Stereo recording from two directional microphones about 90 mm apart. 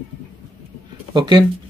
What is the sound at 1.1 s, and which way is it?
Speech, 55° right (ahead or behind).